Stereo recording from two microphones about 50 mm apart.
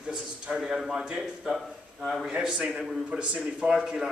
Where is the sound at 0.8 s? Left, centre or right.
Centre.